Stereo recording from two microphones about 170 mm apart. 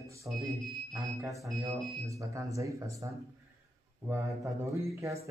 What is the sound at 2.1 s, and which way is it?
Speech, 20° right (ahead or behind).